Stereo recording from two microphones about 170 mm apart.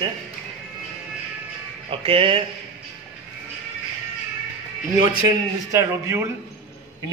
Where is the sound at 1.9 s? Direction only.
30° right (ahead or behind).